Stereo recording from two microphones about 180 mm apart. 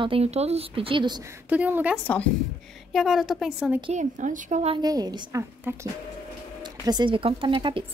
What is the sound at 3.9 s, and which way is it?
Speech, 45° right (ahead or behind).